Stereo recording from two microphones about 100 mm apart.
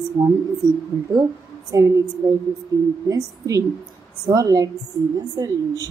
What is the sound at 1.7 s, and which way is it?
A woman's voice, 30° right (ahead or behind).